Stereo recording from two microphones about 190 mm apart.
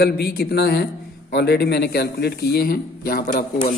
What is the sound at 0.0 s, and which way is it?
A man's voice, 55° left (ahead or behind).